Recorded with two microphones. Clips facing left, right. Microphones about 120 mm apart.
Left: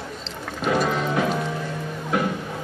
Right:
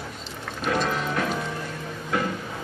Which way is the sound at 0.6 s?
10° left (ahead or behind).